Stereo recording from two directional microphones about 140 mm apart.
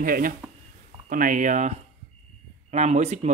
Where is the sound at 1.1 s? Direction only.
75° right (ahead or behind).